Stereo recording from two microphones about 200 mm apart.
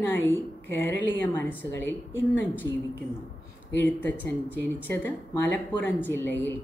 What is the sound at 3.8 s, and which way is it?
Speech, 10° left (ahead or behind).